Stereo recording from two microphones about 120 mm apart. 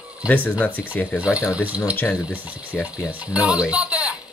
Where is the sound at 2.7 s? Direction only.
10° left (ahead or behind).